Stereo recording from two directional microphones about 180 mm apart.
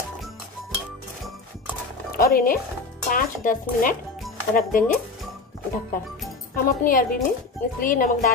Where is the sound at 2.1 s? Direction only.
50° left (ahead or behind).